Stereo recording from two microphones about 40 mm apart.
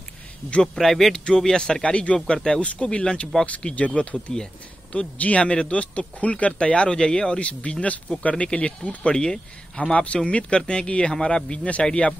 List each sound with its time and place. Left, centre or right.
0.7 s speech: centre
1.1 s speech: left
3.4 s speech: left
7.3 s speech: left
9.8 s speech: left